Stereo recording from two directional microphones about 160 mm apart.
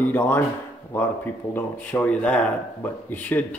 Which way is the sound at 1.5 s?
10° left (ahead or behind).